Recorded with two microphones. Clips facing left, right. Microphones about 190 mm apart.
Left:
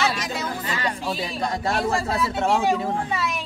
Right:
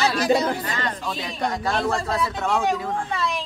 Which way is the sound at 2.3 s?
30° left (ahead or behind).